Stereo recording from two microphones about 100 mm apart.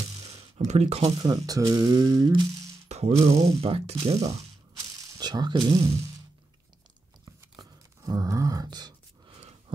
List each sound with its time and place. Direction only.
0.3 s a sound: 90° right
1.2 s speech: 40° right (ahead or behind)
2.9 s speech: 90° right
5.2 s speech: 45° right (ahead or behind)
8.0 s grunt: 35° right (ahead or behind)